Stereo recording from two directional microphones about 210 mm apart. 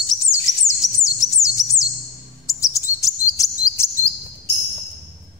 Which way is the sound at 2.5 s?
15° left (ahead or behind).